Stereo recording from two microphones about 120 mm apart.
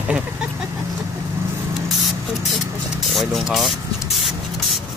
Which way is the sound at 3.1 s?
Centre (ahead or behind).